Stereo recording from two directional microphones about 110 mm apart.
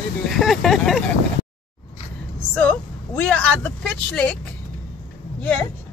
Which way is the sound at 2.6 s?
15° left (ahead or behind).